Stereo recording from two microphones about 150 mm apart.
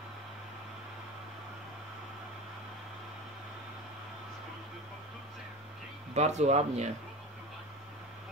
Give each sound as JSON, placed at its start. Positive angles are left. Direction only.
{"t": 6.1, "sound": "speech", "side_deg": -50}